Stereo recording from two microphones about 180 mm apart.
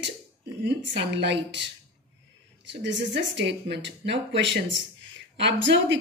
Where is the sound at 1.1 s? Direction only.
75° right (ahead or behind).